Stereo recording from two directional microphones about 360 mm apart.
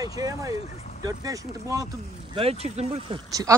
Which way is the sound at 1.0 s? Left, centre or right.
Centre.